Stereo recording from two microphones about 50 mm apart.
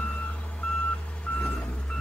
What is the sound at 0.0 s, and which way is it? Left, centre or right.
Reversing beeps, left.